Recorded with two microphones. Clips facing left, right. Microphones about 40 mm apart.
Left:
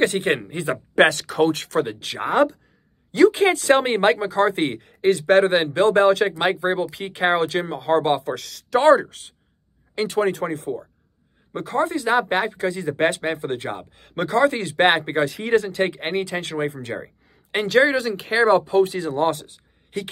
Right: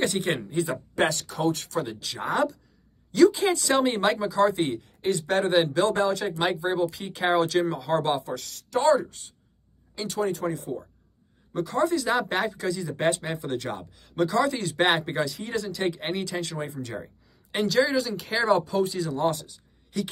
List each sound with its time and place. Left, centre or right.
0.0 s speech: left
3.1 s a woman's voice: left
5.6 s speech: left
6.3 s speech: left
8.2 s speech: left
11.5 s speech: left
14.0 s speech: left